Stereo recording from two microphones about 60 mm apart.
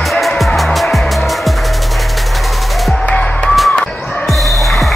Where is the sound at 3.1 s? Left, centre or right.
Left.